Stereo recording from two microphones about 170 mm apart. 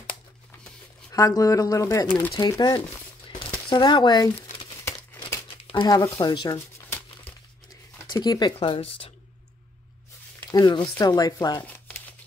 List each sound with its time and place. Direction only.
1.1 s speech: 20° left (ahead or behind)
5.7 s speech: 25° left (ahead or behind)
8.1 s speech: 25° left (ahead or behind)
10.5 s speech: 25° left (ahead or behind)